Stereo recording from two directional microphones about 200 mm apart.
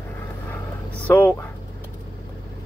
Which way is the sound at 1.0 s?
10° left (ahead or behind).